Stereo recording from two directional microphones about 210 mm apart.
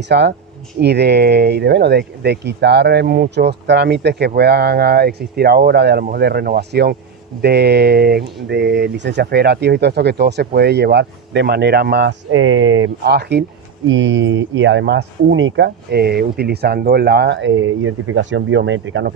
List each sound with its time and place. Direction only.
0.1 s speech: 50° right (ahead or behind); by 12.9 s 70° right (ahead or behind)
13.0 s speech: 50° right (ahead or behind)